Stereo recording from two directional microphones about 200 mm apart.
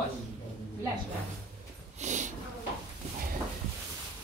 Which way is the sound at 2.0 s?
35° right (ahead or behind).